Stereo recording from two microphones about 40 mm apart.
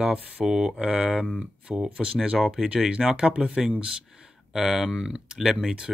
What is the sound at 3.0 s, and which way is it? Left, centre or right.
Speech, right.